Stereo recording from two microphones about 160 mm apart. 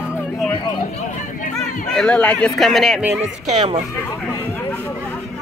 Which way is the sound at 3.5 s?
35° right (ahead or behind).